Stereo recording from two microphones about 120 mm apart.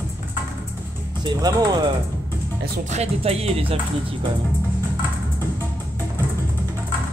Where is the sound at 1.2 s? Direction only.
35° right (ahead or behind).